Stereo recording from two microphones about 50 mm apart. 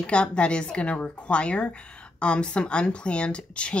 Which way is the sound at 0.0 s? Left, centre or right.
Centre.